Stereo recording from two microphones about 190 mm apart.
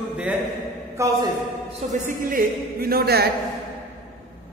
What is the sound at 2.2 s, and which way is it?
Speech, 50° right (ahead or behind).